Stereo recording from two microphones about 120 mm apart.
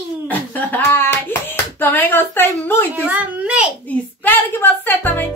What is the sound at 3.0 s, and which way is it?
Speech, 15° right (ahead or behind).